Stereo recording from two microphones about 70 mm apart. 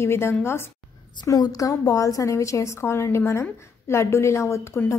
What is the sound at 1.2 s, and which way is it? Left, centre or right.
A woman's voice, left.